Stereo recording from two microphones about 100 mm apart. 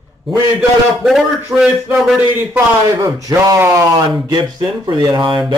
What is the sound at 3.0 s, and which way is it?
Speech, 40° right (ahead or behind).